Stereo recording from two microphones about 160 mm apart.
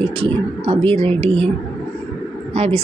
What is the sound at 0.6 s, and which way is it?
Speech, 35° right (ahead or behind).